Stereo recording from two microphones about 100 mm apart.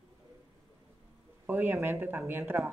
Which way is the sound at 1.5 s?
20° right (ahead or behind).